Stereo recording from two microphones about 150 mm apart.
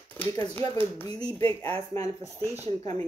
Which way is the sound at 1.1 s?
25° left (ahead or behind).